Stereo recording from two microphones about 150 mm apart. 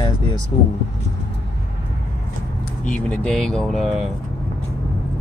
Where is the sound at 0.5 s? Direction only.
30° left (ahead or behind).